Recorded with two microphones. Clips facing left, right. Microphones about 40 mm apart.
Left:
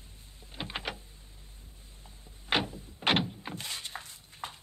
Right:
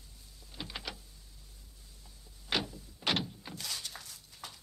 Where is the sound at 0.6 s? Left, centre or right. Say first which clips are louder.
Left 5 dB; left.